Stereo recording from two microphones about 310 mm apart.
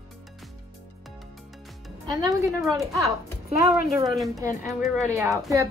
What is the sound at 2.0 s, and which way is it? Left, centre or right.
A woman's voice, centre.